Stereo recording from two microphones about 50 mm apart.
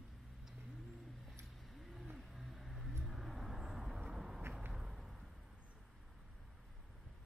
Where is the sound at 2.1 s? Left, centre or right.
Centre.